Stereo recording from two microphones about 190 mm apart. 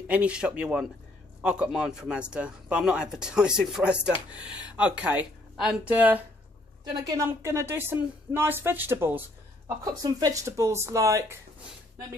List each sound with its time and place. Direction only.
0.1 s speech: 5° right (ahead or behind)
6.8 s a woman's voice: 20° right (ahead or behind)